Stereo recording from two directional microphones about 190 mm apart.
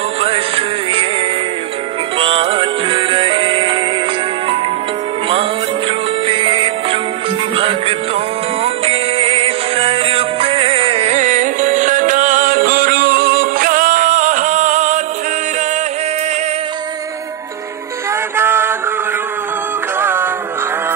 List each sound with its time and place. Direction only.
0.2 s music: 30° right (ahead or behind)
2.1 s music: 30° right (ahead or behind)
6.2 s music: 30° right (ahead or behind)
18.3 s a sound: 10° right (ahead or behind)
20.0 s music: 10° right (ahead or behind)